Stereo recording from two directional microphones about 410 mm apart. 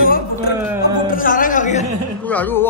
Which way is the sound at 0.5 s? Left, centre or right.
Centre.